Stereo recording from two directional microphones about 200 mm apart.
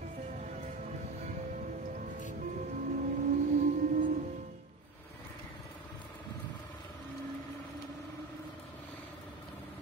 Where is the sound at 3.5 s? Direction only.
40° right (ahead or behind).